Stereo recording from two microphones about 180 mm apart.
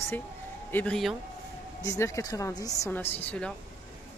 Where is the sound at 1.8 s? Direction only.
15° left (ahead or behind).